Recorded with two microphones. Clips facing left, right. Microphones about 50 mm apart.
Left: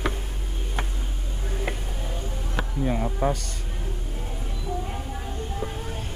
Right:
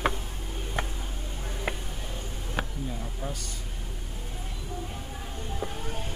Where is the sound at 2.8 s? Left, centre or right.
Left.